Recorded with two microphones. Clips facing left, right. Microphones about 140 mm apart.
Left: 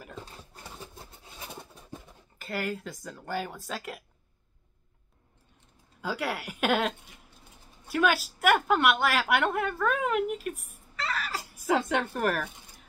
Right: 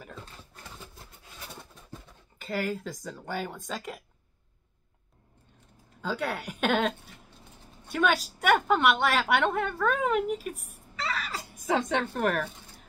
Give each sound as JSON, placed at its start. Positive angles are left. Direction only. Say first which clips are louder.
{"t": 0.7, "sound": "pigeon", "louder": "left 3 dB", "side_deg": 20}
{"t": 2.3, "sound": "speech", "louder": "right 2 dB", "side_deg": 0}
{"t": 5.9, "sound": "speech", "louder": "right 1 dB", "side_deg": 10}
{"t": 7.9, "sound": "a woman's voice", "louder": "even", "side_deg": 5}